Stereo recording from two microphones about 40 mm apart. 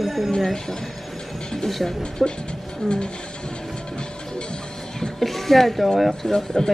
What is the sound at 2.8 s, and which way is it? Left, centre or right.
Speech, centre.